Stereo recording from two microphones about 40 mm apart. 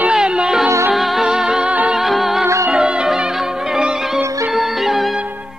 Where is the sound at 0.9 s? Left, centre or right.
Centre.